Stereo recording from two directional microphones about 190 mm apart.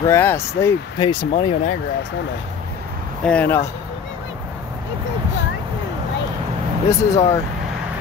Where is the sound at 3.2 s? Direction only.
10° left (ahead or behind).